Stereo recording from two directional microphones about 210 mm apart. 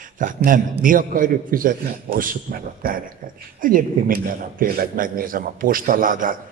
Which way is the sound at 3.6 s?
40° right (ahead or behind).